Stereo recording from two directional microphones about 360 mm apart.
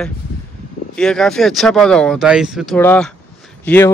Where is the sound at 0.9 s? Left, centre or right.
Centre.